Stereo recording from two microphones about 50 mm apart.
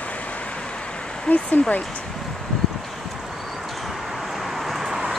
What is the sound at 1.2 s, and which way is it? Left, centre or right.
Speech, left.